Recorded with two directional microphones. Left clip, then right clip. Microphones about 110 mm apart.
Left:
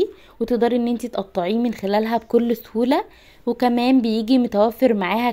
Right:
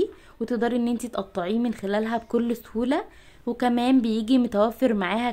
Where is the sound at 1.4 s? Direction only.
30° left (ahead or behind).